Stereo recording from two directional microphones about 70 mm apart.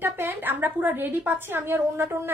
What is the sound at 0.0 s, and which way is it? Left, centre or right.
A woman's voice, right.